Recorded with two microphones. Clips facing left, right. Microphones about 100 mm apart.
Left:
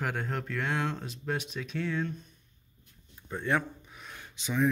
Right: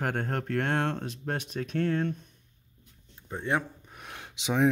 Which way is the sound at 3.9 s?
70° right (ahead or behind).